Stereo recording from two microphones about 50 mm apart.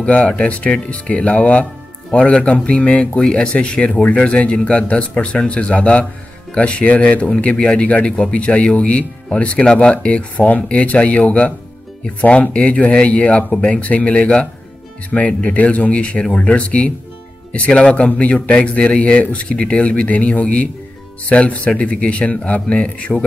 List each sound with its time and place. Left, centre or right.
0.0 s speech: left